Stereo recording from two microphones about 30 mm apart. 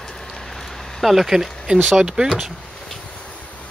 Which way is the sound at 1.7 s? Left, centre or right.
Right.